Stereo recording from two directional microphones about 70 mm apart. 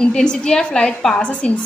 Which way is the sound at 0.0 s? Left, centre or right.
Centre.